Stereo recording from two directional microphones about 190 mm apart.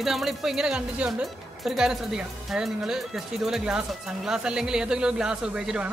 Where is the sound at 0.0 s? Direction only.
Centre (ahead or behind).